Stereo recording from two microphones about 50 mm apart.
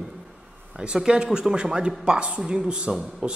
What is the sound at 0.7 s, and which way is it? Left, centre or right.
Speech, centre.